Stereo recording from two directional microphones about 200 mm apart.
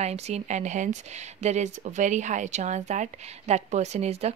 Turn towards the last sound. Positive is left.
turn(degrees=-30)  # may be behind; listen again after turning